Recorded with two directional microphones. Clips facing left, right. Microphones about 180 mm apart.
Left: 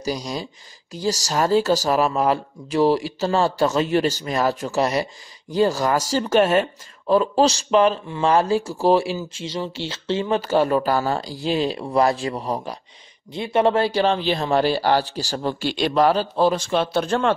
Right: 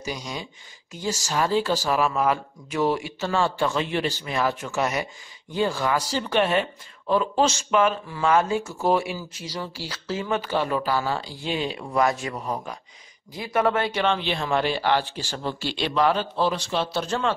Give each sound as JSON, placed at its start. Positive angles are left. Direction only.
{"t": 0.0, "sound": "speech", "side_deg": 35}
{"t": 10.4, "sound": "speech", "side_deg": 40}